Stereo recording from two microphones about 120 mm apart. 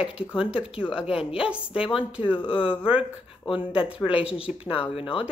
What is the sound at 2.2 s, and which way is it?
Speech, 45° left (ahead or behind).